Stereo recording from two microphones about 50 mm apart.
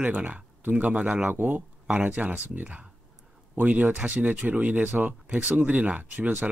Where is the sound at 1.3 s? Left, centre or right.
Right.